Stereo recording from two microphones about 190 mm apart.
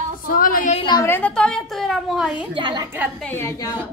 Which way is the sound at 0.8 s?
15° left (ahead or behind).